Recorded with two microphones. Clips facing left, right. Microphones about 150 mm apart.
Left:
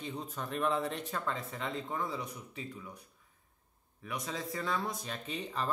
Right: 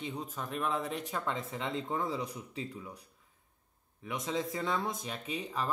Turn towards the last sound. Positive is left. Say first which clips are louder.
# right 1 dB
turn(degrees=-5)  # may be behind; listen again after turning